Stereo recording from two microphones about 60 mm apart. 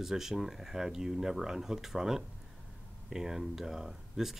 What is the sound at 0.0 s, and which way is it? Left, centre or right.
Speech, centre.